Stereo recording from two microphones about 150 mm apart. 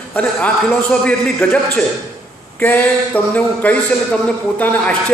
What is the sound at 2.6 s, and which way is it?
A man's voice, 10° left (ahead or behind).